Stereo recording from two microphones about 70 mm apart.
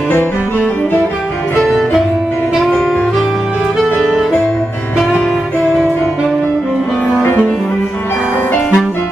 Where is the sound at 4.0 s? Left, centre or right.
Centre.